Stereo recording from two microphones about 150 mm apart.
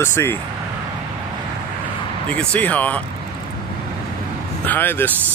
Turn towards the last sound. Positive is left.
turn(degrees=15)  # may be behind; listen again after turning